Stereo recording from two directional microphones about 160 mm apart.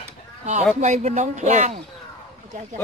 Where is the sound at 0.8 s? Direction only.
45° right (ahead or behind).